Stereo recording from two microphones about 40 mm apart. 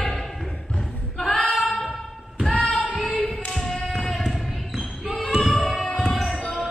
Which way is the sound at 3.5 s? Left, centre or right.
Centre.